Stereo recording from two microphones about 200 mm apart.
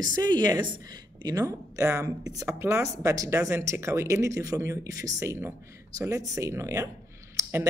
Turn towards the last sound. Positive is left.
turn(degrees=-15)  # may be behind; listen again after turning